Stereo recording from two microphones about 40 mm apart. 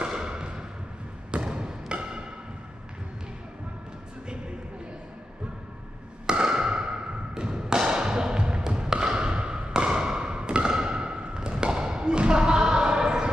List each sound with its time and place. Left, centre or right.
0.0 s thump: right
6.2 s thump: centre